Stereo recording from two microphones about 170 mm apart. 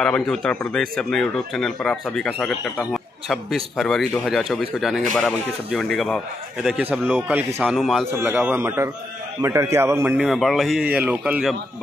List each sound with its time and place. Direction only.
0.0 s a man's voice: 5° left (ahead or behind)
6.8 s a man's voice: 10° right (ahead or behind)
8.1 s a man's voice: 15° right (ahead or behind)
10.1 s a man's voice: 5° right (ahead or behind)